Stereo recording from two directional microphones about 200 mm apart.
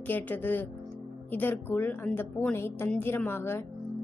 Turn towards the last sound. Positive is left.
turn(degrees=10)  # may be behind; listen again after turning